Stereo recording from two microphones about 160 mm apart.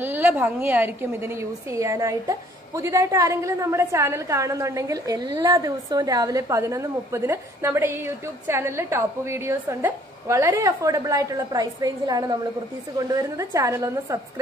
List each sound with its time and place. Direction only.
0.0 s a woman's voice: 10° right (ahead or behind)